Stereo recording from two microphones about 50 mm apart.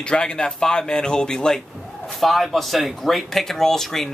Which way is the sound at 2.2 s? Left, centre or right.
Centre.